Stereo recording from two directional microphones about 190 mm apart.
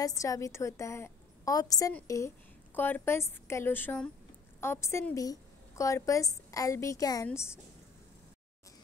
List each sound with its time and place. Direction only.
0.0 s a woman's voice: 15° left (ahead or behind)